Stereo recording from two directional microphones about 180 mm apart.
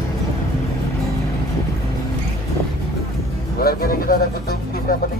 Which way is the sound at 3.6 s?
55° left (ahead or behind).